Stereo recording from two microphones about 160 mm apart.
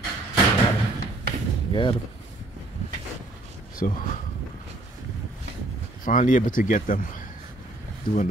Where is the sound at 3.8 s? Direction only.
55° left (ahead or behind).